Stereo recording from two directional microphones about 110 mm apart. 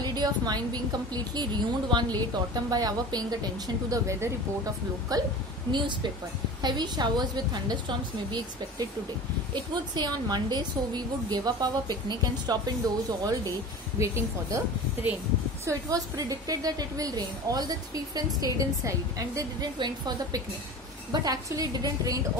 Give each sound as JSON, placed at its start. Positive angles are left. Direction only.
{"t": 0.0, "sound": "a woman's voice", "side_deg": -40}
{"t": 9.5, "sound": "a woman's voice", "side_deg": -40}
{"t": 15.6, "sound": "a woman's voice", "side_deg": -30}